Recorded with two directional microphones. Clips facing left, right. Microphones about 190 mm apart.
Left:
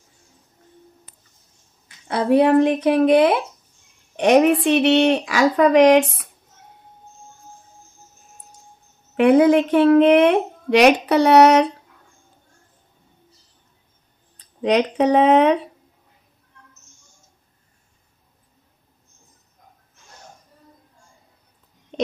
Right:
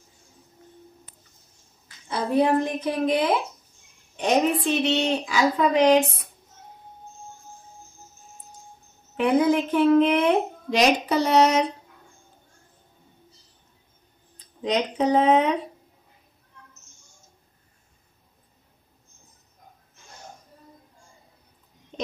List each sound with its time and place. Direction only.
2.0 s a woman's voice: 70° left (ahead or behind)
9.1 s a woman's voice: 75° left (ahead or behind)
14.3 s speech: 70° left (ahead or behind)